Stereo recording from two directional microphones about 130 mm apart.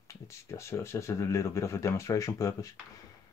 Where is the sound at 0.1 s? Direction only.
20° left (ahead or behind).